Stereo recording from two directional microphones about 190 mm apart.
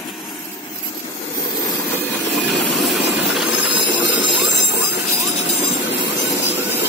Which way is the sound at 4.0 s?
75° left (ahead or behind).